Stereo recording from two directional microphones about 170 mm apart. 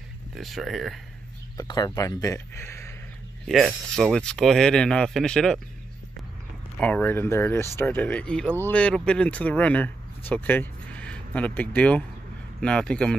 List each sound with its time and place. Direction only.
0.3 s speech: centre (ahead or behind)
1.6 s speech: 20° left (ahead or behind)
3.4 s speech: centre (ahead or behind)
6.8 s speech: 10° left (ahead or behind)